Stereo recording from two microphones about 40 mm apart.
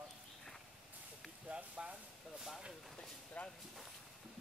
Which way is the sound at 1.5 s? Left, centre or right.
Right.